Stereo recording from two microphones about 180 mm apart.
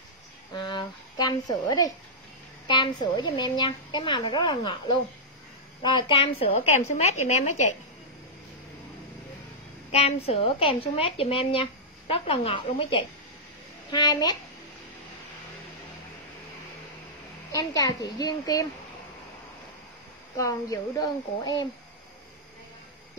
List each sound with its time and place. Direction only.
0.7 s a woman's voice: 25° left (ahead or behind)
9.8 s a woman's voice: 35° left (ahead or behind)
17.5 s a woman's voice: 20° left (ahead or behind)
20.3 s a woman's voice: 20° left (ahead or behind)